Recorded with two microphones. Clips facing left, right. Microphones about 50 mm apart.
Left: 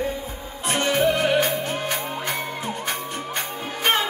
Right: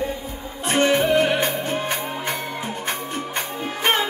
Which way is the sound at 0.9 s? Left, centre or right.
Centre.